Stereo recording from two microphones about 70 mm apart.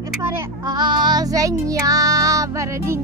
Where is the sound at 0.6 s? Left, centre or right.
Right.